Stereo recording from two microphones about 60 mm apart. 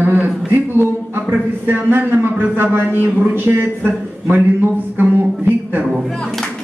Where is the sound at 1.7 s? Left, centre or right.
Right.